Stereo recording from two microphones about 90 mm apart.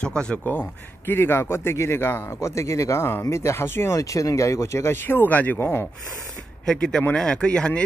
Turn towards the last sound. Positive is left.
turn(degrees=10)  # may be behind; listen again after turning